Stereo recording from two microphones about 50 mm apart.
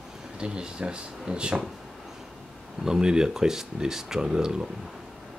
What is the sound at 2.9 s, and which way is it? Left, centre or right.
Speech, centre.